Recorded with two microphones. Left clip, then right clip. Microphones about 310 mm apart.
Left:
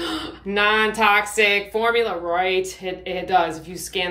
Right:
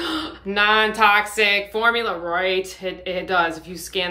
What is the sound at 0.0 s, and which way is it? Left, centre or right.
Speech, centre.